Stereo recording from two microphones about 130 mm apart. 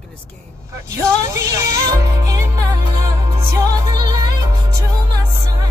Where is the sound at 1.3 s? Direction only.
25° right (ahead or behind).